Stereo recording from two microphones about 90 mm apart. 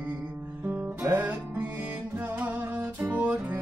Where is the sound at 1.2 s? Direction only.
15° right (ahead or behind).